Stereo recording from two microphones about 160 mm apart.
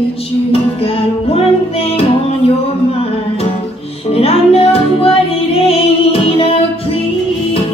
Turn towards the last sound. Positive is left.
turn(degrees=35)  # may be behind; listen again after turning